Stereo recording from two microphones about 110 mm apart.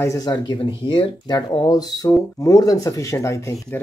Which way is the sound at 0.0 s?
30° left (ahead or behind).